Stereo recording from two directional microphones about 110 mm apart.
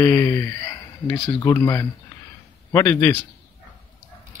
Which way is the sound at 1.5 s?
25° left (ahead or behind).